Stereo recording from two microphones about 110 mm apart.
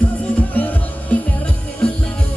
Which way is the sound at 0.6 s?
15° left (ahead or behind).